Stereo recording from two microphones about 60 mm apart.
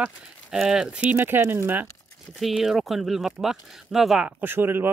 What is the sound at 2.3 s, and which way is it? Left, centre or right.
Speech, centre.